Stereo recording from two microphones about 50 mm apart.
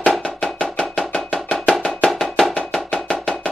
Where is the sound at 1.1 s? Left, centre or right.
Left.